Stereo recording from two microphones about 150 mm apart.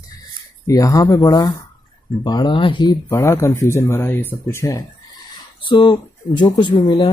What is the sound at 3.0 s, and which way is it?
Speech, 15° left (ahead or behind).